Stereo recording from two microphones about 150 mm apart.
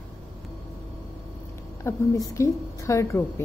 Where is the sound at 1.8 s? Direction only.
20° left (ahead or behind).